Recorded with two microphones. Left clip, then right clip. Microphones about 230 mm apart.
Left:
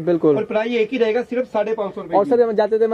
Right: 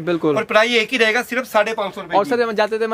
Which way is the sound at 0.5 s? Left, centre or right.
Right.